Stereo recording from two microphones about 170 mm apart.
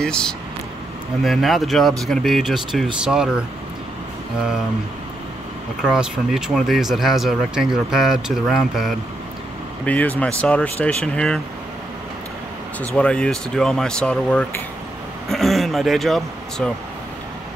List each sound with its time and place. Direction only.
0.0 s speech: 5° left (ahead or behind)
5.8 s speech: 5° right (ahead or behind)
12.8 s speech: 5° left (ahead or behind)